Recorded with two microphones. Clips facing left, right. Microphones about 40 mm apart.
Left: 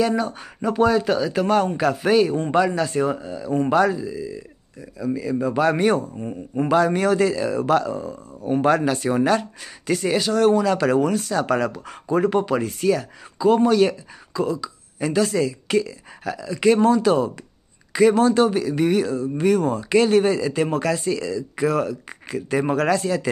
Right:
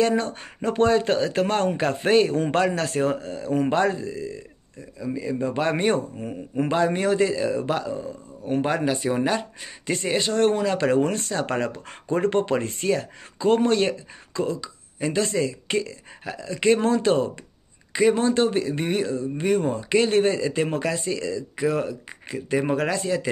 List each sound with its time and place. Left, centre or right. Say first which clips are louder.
0.0 s speech: left 1 dB; right
2.5 s speech: left 3 dB; right
3.6 s speech: left 4 dB; right
4.1 s speech: left 2 dB; right
5.0 s speech: left 3 dB; centre
5.9 s speech: left 1 dB; right
6.7 s speech: left 4 dB; centre; by 10.6 s right
10.6 s speech: left 2 dB; centre
14.6 s speech: left 2 dB; centre
16.7 s speech: left 3 dB; right; by 23.3 s centre